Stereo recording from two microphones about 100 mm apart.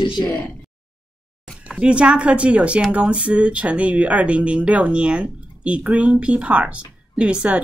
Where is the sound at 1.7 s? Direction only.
10° right (ahead or behind).